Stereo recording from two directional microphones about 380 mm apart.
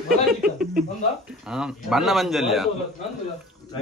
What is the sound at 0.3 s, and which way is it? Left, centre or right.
Speech, centre.